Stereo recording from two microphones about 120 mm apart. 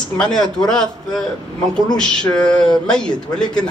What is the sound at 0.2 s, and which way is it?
A man's voice, 5° left (ahead or behind).